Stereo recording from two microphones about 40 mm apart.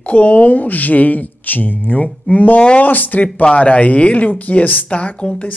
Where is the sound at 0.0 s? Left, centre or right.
Left.